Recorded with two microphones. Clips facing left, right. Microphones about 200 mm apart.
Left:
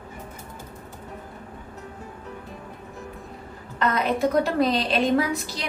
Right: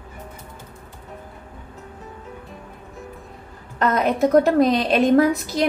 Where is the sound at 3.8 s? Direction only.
45° right (ahead or behind).